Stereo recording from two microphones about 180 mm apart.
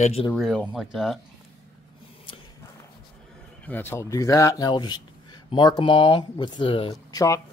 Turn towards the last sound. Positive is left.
turn(degrees=20)  # may be behind; listen again after turning